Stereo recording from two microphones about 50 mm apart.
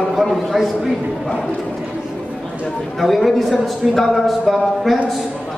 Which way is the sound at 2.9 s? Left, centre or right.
Centre.